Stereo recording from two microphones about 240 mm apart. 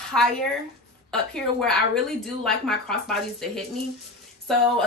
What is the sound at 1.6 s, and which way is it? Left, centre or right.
A woman's voice, centre.